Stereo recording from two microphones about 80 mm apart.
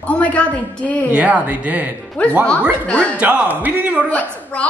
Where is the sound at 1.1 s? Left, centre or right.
Centre.